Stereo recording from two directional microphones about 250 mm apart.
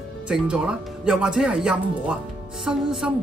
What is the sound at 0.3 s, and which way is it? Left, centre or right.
Speech, centre.